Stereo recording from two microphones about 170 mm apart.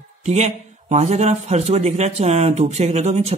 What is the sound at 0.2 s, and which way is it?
A man's voice, 40° right (ahead or behind).